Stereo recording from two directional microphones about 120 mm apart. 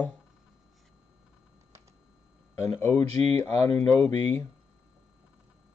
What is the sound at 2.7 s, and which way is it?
Speech, 20° left (ahead or behind).